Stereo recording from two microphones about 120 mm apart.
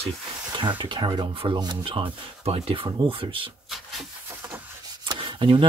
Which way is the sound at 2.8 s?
40° right (ahead or behind).